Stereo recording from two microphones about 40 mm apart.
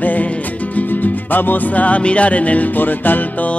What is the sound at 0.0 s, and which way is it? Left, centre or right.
Music, left.